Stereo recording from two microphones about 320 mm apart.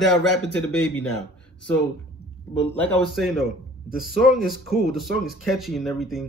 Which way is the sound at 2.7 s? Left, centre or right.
Centre.